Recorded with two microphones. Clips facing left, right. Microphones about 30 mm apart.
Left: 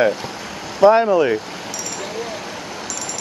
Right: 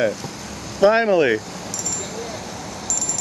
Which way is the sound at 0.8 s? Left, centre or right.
Centre.